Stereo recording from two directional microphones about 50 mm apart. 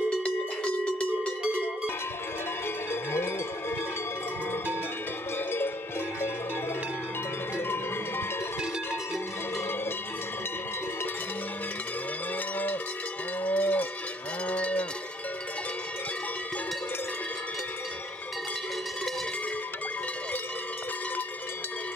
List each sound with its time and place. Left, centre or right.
2.9 s cowbell: left
7.5 s cowbell: left
13.4 s cowbell: left